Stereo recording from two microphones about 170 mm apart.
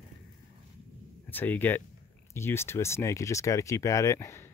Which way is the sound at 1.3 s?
10° left (ahead or behind).